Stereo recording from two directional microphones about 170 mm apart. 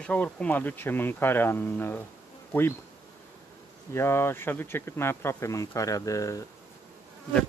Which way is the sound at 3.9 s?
15° left (ahead or behind).